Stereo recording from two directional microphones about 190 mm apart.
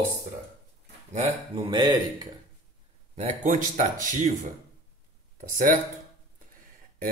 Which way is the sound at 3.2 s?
40° right (ahead or behind).